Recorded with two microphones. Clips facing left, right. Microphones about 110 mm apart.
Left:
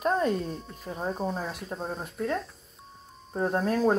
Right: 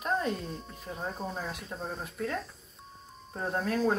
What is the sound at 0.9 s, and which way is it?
Speech, 35° left (ahead or behind).